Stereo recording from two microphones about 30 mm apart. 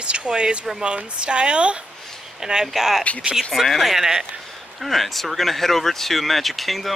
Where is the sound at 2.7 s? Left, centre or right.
Centre.